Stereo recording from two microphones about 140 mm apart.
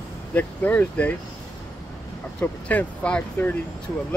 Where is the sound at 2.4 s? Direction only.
10° left (ahead or behind).